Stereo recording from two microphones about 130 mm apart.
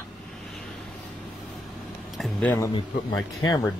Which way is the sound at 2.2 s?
10° left (ahead or behind).